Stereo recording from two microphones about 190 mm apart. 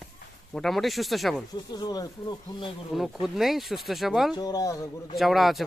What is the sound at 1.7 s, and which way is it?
Speech, 20° left (ahead or behind).